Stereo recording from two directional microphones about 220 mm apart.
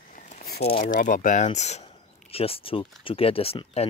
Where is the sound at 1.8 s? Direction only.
25° left (ahead or behind).